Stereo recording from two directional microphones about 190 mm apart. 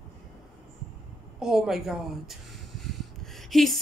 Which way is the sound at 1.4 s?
Centre (ahead or behind).